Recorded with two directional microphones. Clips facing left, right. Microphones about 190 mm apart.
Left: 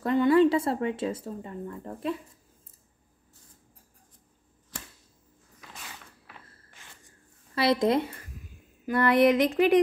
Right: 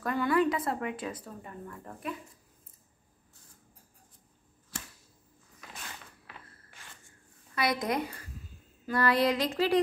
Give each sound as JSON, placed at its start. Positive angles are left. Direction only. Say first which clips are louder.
{"t": 0.0, "sound": "speech", "louder": "left 7 dB", "side_deg": 25}
{"t": 7.5, "sound": "speech", "louder": "left 7 dB", "side_deg": 25}